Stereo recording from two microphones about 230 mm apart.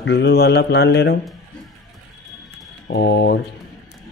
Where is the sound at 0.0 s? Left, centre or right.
Left.